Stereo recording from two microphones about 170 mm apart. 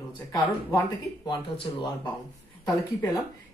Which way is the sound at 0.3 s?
20° left (ahead or behind).